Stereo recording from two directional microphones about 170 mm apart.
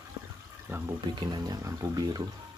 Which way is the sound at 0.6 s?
15° right (ahead or behind).